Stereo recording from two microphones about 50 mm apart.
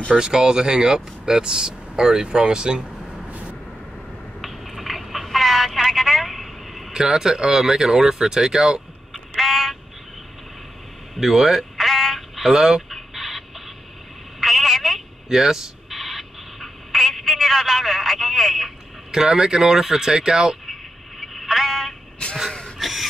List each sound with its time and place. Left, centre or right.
0.2 s speech: centre
3.3 s vehicle: right
4.4 s telephone: centre
6.9 s speech: centre
9.4 s a sound: centre
11.1 s a sound: centre
14.4 s telephone: centre
15.2 s a sound: centre
19.1 s speech: centre
21.2 s a sound: centre
22.2 s wheeze: left
22.8 s gasp: centre